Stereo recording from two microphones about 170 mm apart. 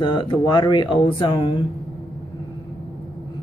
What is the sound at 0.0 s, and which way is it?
A woman's voice, 25° left (ahead or behind).